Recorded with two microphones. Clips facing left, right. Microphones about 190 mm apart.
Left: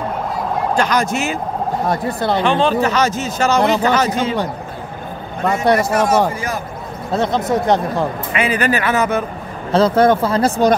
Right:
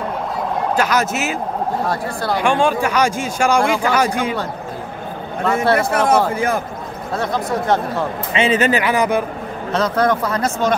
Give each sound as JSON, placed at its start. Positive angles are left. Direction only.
{"t": 0.7, "sound": "speech", "side_deg": -5}
{"t": 1.9, "sound": "speech", "side_deg": 20}
{"t": 2.4, "sound": "a man's voice", "side_deg": -10}
{"t": 5.4, "sound": "speech", "side_deg": 15}
{"t": 5.8, "sound": "speech", "side_deg": -55}
{"t": 7.2, "sound": "speech", "side_deg": 20}
{"t": 8.3, "sound": "speech", "side_deg": -25}
{"t": 9.7, "sound": "speech", "side_deg": 30}